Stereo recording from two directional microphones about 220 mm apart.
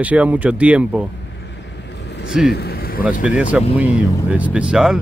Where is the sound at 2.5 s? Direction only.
45° left (ahead or behind).